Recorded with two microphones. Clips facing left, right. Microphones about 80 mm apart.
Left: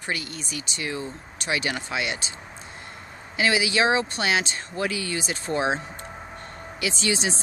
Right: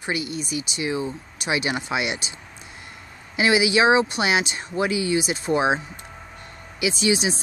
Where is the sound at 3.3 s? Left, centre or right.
Centre.